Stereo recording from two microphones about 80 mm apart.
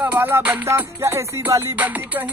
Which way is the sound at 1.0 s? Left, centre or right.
Right.